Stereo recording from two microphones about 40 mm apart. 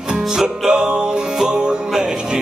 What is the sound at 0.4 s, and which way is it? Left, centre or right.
Music, centre.